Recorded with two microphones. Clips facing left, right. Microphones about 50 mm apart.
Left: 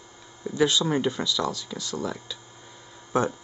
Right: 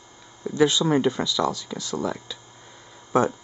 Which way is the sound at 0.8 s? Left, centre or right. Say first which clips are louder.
Right 4 dB; centre.